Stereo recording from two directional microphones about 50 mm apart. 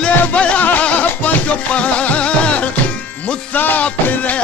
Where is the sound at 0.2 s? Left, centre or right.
Left.